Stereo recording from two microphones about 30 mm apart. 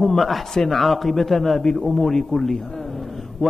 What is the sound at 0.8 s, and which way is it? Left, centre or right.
A man's voice, centre.